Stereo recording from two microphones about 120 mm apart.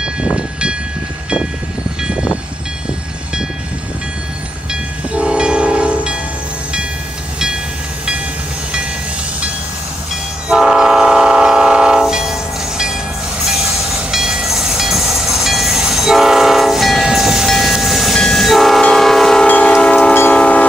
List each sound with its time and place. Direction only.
0.0 s train: 10° right (ahead or behind)
5.1 s train: 10° right (ahead or behind)
10.5 s train: 5° right (ahead or behind)
19.4 s train: 15° left (ahead or behind)